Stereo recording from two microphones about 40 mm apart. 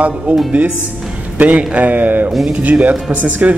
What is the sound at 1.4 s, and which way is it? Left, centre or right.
A man's voice, right.